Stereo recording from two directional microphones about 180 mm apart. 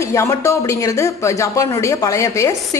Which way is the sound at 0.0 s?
15° left (ahead or behind).